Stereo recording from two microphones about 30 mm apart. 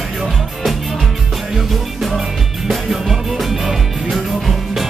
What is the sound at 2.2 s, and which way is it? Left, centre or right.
Music, centre.